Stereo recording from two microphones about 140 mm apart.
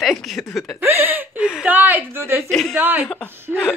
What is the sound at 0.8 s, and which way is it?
Chuckle, 15° right (ahead or behind).